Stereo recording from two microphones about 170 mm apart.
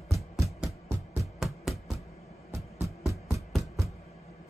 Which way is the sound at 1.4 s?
Centre (ahead or behind).